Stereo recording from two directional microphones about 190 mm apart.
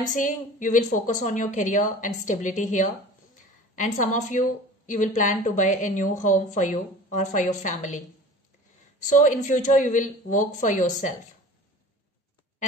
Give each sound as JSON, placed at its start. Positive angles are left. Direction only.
{"t": 0.1, "sound": "a woman's voice", "side_deg": 40}
{"t": 9.0, "sound": "a woman's voice", "side_deg": 45}